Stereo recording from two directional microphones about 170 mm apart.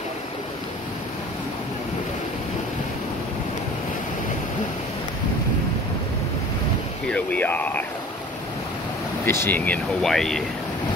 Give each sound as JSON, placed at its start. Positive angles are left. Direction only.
{"t": 7.1, "sound": "speech", "side_deg": 10}
{"t": 9.2, "sound": "speech", "side_deg": 15}